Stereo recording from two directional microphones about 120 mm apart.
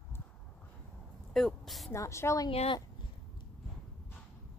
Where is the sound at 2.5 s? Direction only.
55° left (ahead or behind).